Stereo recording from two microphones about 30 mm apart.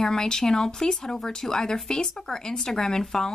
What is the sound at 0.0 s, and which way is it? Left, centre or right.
A woman's voice, left.